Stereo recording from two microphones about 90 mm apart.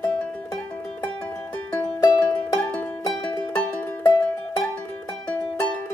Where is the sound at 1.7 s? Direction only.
20° left (ahead or behind).